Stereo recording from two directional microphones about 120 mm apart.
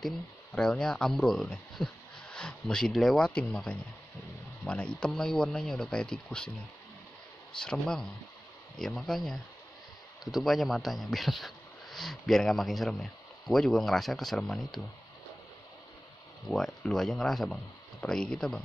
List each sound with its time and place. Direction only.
0.6 s speech: 5° left (ahead or behind)
7.6 s speech: 5° left (ahead or behind)
16.4 s speech: 5° left (ahead or behind)